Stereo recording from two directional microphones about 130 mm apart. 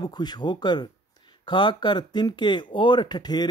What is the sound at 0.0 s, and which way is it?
Speech, 35° left (ahead or behind).